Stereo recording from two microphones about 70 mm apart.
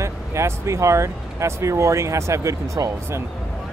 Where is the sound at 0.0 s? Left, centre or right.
Right.